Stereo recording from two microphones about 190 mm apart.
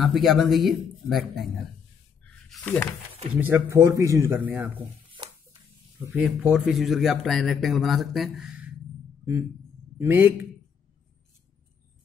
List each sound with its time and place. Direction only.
0.0 s speech: centre (ahead or behind)
2.5 s speech: 10° left (ahead or behind)
3.3 s speech: 10° right (ahead or behind)
5.1 s a sound: 25° right (ahead or behind)
6.0 s speech: 10° right (ahead or behind)
9.9 s speech: 10° right (ahead or behind)